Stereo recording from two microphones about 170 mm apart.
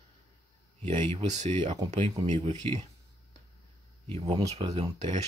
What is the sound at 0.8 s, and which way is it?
Speech, 40° right (ahead or behind).